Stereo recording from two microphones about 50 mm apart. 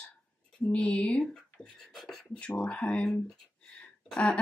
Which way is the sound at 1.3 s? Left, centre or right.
Centre.